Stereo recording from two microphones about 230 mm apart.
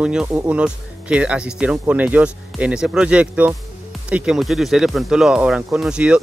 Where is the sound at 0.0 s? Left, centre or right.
Centre.